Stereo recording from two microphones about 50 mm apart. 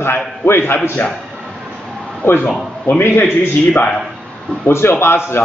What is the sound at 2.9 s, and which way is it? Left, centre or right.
Speech, left.